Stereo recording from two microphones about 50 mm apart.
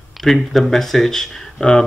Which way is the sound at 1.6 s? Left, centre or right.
Left.